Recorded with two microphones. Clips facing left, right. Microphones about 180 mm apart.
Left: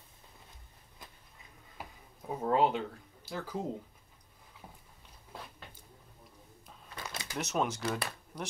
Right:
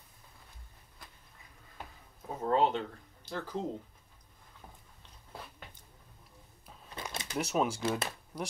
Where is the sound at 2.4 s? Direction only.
10° left (ahead or behind).